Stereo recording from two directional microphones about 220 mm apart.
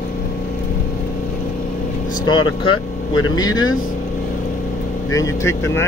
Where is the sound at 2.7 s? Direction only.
70° left (ahead or behind).